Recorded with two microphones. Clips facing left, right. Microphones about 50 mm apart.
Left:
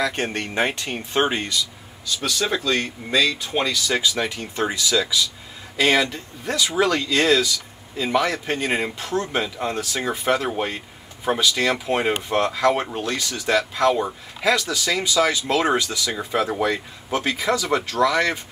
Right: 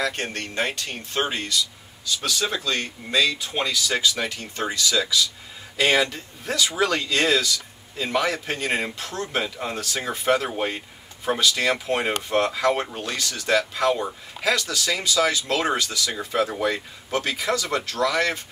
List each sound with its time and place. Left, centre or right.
0.1 s speech: centre
2.0 s speech: centre
4.0 s speech: centre
5.8 s speech: centre
14.0 s speech: centre